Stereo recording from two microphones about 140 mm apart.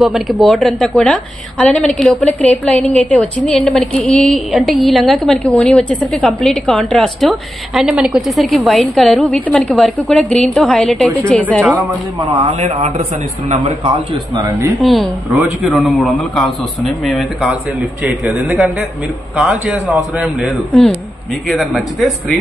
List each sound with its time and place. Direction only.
0.0 s a woman's voice: centre (ahead or behind)
12.4 s a man's voice: 55° right (ahead or behind)
14.8 s a woman's voice: centre (ahead or behind)